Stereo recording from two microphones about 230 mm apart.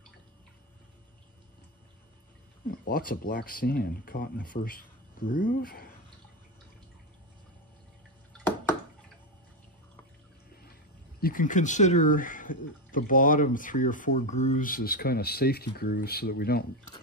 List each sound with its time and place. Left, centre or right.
2.8 s speech: left
10.6 s speech: left